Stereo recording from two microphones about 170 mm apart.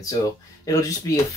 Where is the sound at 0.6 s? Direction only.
20° left (ahead or behind).